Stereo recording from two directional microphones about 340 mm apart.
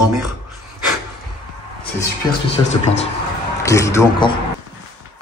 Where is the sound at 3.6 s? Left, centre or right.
Centre.